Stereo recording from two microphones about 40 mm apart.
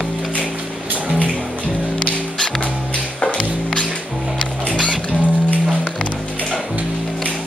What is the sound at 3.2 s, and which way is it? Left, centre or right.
Music, left.